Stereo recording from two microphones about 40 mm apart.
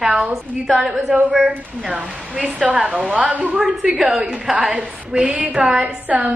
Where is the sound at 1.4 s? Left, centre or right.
Right.